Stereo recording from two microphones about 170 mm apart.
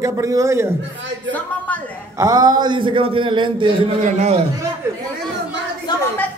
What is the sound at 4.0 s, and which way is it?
Speech, 45° right (ahead or behind).